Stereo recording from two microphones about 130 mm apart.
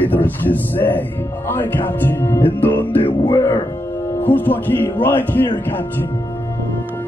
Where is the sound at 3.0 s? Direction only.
35° left (ahead or behind).